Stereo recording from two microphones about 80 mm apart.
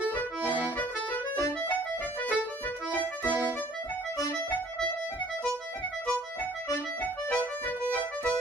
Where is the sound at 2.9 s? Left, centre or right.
Centre.